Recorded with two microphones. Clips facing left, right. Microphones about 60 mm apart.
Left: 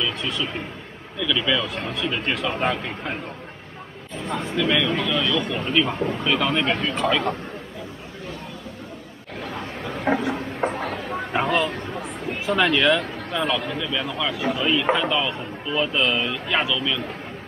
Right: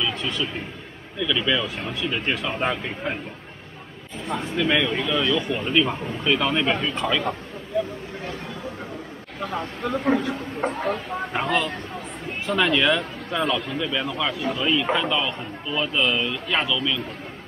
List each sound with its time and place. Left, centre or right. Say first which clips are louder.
0.0 s a sound: even; centre
1.2 s speech: even; centre
4.4 s speech: even; centre
9.4 s speech: right 3 dB; right
10.6 s speech: right 1 dB; centre